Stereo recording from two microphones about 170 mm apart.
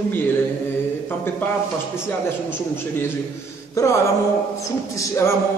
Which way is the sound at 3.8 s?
20° left (ahead or behind).